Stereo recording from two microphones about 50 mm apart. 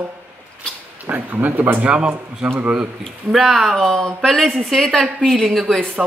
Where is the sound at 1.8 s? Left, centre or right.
Right.